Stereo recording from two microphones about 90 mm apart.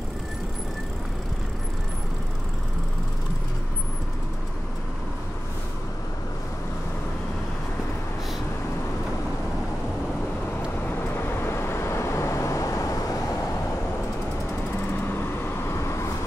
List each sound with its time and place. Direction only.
10.9 s vehicle: 25° left (ahead or behind)
14.9 s vehicle: 25° left (ahead or behind)